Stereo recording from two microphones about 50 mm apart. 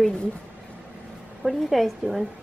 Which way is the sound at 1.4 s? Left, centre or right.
Centre.